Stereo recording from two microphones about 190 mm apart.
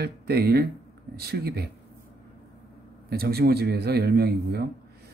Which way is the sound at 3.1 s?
55° right (ahead or behind).